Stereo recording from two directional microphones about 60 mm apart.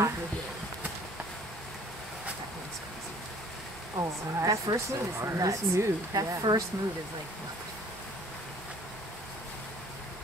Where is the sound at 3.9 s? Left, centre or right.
Right.